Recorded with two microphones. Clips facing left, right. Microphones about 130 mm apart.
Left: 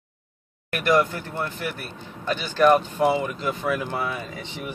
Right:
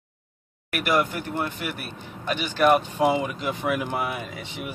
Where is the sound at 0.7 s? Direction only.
10° right (ahead or behind).